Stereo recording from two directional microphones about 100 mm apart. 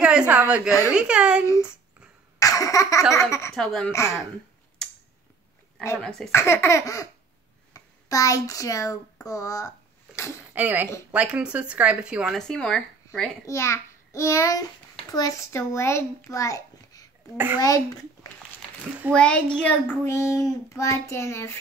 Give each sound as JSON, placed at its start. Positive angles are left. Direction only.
{"t": 0.0, "sound": "a woman's voice", "side_deg": -10}
{"t": 2.3, "sound": "cough", "side_deg": 35}
{"t": 3.5, "sound": "speech", "side_deg": 5}
{"t": 5.9, "sound": "a child's voice", "side_deg": 10}
{"t": 6.3, "sound": "child singing", "side_deg": 25}
{"t": 7.7, "sound": "speech", "side_deg": 35}
{"t": 10.5, "sound": "speech", "side_deg": -15}
{"t": 12.4, "sound": "speech", "side_deg": 5}
{"t": 13.5, "sound": "a child's voice", "side_deg": 30}
{"t": 15.0, "sound": "child singing", "side_deg": 40}
{"t": 16.3, "sound": "a child's voice", "side_deg": 35}
{"t": 19.1, "sound": "a child's voice", "side_deg": 10}
{"t": 20.1, "sound": "child singing", "side_deg": 25}